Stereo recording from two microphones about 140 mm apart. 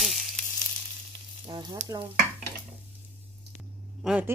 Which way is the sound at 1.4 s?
35° right (ahead or behind).